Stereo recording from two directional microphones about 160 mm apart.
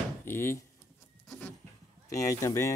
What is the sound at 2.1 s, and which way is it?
Speech, 20° left (ahead or behind).